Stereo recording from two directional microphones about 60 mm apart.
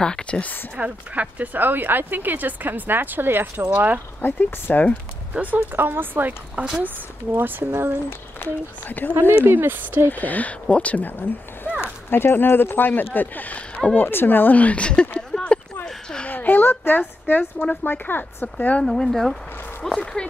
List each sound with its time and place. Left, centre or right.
0.0 s speech: centre
0.7 s speech: right
4.2 s speech: left
5.3 s speech: right
6.5 s a woman's voice: centre
7.3 s speech: right
8.1 s speech: left
9.4 s speech: right
10.0 s speech: left
15.9 s a sound: centre
16.3 s a sound: left
17.8 s speech: left
18.9 s speech: centre